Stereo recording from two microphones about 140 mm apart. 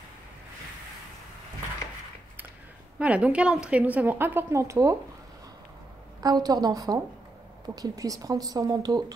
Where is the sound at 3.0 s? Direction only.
10° right (ahead or behind).